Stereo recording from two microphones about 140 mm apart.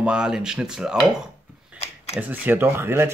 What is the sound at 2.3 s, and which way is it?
Speech, 15° right (ahead or behind).